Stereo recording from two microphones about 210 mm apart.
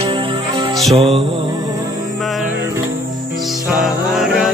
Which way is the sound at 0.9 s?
30° right (ahead or behind).